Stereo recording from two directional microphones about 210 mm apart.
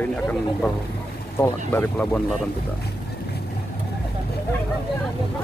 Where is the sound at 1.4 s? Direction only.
10° left (ahead or behind).